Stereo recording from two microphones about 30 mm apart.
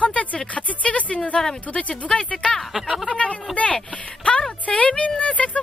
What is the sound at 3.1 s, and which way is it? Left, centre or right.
Speech, left.